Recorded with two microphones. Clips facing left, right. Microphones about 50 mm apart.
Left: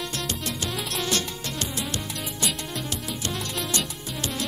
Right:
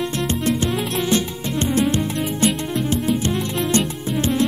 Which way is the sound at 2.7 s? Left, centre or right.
Right.